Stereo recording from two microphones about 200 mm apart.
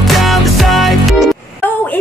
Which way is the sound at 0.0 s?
Centre (ahead or behind).